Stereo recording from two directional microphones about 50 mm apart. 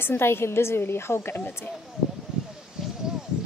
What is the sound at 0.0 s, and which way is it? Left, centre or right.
A woman's voice, left.